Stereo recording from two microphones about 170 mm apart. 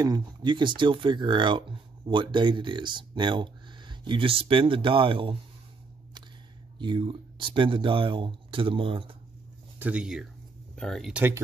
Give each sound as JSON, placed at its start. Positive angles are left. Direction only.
{"t": 0.0, "sound": "speech", "side_deg": -25}
{"t": 6.8, "sound": "speech", "side_deg": -30}
{"t": 9.8, "sound": "speech", "side_deg": -5}